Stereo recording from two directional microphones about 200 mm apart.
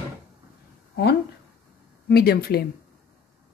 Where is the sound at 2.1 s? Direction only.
50° left (ahead or behind).